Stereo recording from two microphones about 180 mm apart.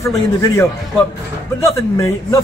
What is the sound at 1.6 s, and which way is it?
Speech, 15° left (ahead or behind).